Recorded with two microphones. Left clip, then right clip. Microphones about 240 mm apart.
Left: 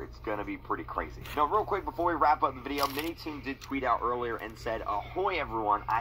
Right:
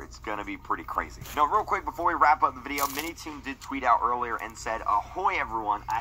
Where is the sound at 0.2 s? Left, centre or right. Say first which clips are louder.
Right 1 dB; right; by 5.5 s centre.